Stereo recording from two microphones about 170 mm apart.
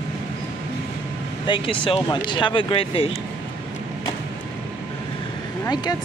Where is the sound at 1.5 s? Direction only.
30° left (ahead or behind).